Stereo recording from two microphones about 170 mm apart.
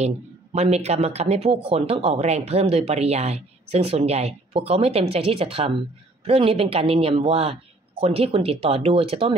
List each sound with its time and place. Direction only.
0.0 s speech: 40° right (ahead or behind)